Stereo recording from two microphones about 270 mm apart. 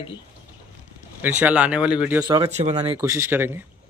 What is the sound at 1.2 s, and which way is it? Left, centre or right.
Speech, centre.